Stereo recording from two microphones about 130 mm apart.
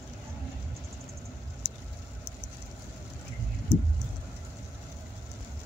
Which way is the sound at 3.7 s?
20° right (ahead or behind).